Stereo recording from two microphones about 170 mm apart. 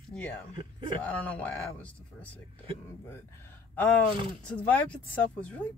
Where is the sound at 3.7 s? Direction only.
10° left (ahead or behind).